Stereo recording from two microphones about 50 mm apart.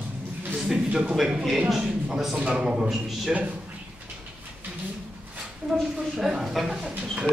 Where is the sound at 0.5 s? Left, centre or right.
Centre.